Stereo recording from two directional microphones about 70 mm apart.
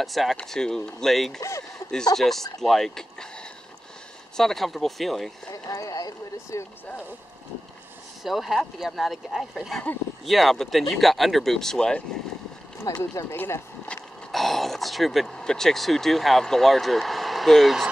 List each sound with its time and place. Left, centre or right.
0.0 s speech: centre
5.5 s speech: left
8.2 s speech: centre
12.8 s speech: left
14.3 s speech: centre